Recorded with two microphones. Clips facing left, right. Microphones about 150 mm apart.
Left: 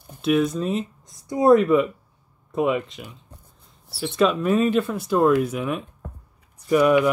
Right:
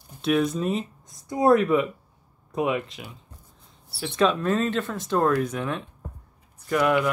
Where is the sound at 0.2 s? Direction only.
Centre (ahead or behind).